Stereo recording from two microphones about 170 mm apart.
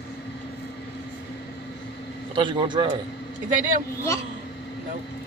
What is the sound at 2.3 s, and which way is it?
Speech, 30° right (ahead or behind).